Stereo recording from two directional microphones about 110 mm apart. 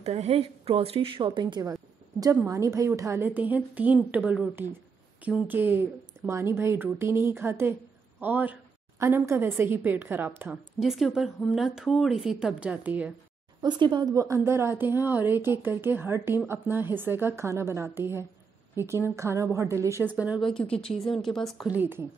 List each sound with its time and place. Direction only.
0.0 s a woman's voice: 75° right (ahead or behind); by 8.5 s 15° right (ahead or behind)
9.0 s a woman's voice: 25° right (ahead or behind)
10.8 s speech: centre (ahead or behind)
13.6 s speech: 45° right (ahead or behind)
14.1 s a woman's voice: 30° right (ahead or behind); by 20.3 s 15° right (ahead or behind)
20.3 s speech: 5° left (ahead or behind)
20.7 s speech: 60° left (ahead or behind)
21.6 s a man's voice: 15° right (ahead or behind)